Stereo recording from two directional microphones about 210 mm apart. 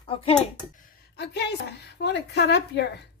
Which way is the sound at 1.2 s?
50° left (ahead or behind).